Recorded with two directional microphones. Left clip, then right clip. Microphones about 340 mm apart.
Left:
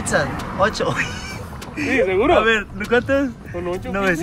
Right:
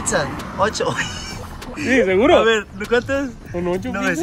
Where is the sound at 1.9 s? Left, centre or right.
Right.